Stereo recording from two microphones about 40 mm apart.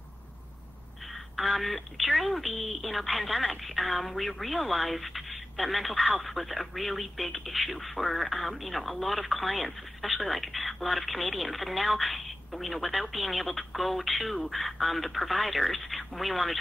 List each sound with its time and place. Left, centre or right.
1.4 s speech: centre